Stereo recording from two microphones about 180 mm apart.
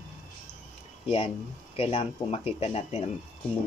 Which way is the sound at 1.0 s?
30° left (ahead or behind).